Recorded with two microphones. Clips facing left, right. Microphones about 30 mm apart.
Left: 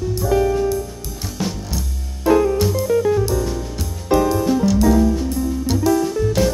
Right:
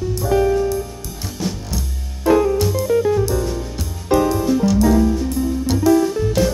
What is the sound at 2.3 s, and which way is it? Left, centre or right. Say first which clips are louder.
Music: even; centre.